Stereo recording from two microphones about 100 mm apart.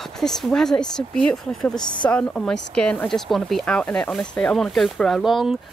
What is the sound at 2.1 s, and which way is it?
Speech, 10° left (ahead or behind).